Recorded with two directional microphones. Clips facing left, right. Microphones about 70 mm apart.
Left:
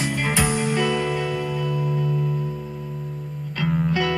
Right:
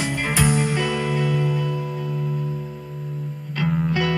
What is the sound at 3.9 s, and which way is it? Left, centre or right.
Music, right.